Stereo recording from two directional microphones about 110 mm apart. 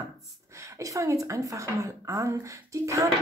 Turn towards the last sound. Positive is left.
turn(degrees=-30)  # may be behind; listen again after turning